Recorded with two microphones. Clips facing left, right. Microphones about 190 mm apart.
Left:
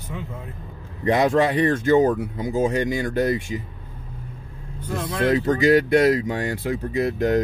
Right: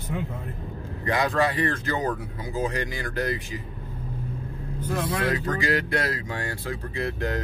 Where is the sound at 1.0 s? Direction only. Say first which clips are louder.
Left 6 dB; 25° left (ahead or behind).